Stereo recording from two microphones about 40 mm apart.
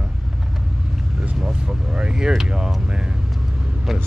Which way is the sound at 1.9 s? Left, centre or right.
Right.